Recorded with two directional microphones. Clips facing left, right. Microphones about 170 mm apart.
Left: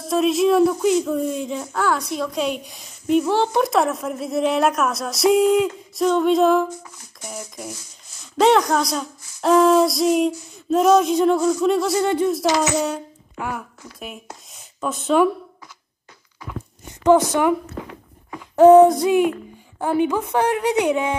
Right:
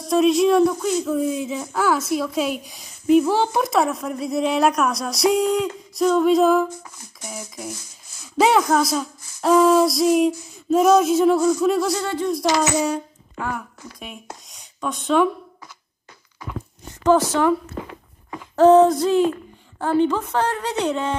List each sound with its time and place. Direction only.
0.0 s speech: centre (ahead or behind)
12.0 s speech: 20° left (ahead or behind)
12.3 s speech: 5° left (ahead or behind)
14.5 s a sound: centre (ahead or behind)
17.0 s a woman's voice: 15° left (ahead or behind)
18.6 s a woman's voice: 15° left (ahead or behind)